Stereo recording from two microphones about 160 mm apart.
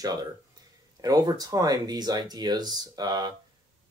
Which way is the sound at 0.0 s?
25° right (ahead or behind).